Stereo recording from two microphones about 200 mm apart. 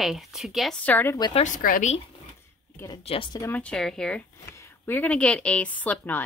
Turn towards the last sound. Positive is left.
turn(degrees=10)  # may be behind; listen again after turning